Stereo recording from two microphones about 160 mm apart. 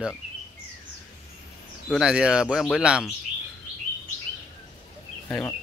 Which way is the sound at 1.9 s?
5° right (ahead or behind).